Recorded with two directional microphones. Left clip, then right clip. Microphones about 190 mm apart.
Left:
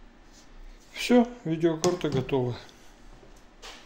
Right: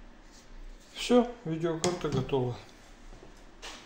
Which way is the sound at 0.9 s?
50° left (ahead or behind).